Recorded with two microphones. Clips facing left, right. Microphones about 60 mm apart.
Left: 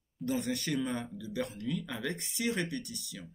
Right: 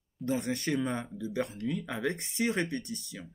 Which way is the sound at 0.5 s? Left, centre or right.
Right.